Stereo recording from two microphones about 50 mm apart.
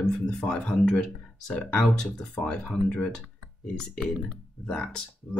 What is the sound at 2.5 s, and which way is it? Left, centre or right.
Speech, left.